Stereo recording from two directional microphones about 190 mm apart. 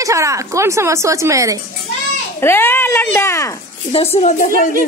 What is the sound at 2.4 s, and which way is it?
Speech, 10° left (ahead or behind).